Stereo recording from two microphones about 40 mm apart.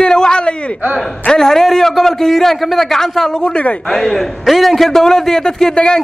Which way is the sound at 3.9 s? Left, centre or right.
Centre.